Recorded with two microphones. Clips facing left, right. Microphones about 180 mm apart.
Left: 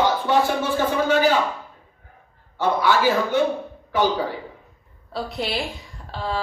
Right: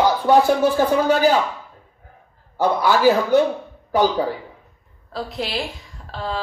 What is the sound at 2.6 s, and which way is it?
Speech, 40° right (ahead or behind).